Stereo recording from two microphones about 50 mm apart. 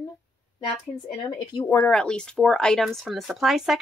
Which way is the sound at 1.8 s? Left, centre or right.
Centre.